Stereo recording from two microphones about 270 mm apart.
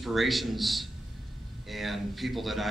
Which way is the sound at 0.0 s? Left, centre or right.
Centre.